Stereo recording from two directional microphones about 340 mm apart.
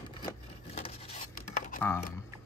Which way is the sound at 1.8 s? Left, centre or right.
Centre.